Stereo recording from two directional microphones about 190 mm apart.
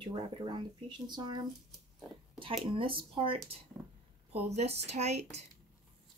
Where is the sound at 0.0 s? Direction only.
25° right (ahead or behind).